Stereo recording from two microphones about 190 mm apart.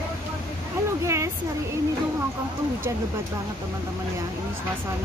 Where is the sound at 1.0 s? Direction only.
15° right (ahead or behind).